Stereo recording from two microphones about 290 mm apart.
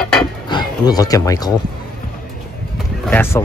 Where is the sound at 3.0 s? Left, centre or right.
Centre.